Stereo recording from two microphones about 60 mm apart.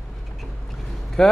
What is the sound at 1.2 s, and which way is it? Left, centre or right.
Speech, centre.